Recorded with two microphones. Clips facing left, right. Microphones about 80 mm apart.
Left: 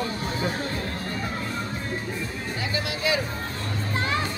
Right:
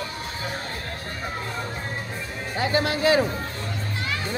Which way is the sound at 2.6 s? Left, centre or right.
Right.